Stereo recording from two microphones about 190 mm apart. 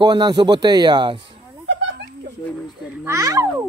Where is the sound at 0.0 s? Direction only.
20° right (ahead or behind).